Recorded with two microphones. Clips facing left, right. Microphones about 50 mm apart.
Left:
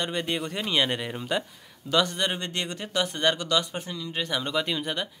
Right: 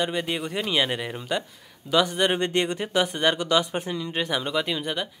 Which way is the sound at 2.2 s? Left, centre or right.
Right.